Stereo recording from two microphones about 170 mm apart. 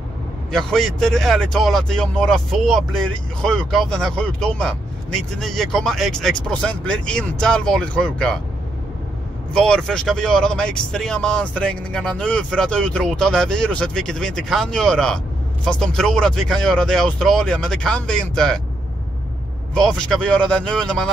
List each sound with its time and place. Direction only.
0.5 s speech: 5° left (ahead or behind)
9.5 s speech: 5° left (ahead or behind)
19.7 s speech: 5° left (ahead or behind)